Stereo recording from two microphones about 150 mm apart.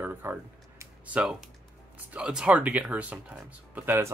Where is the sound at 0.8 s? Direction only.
10° right (ahead or behind).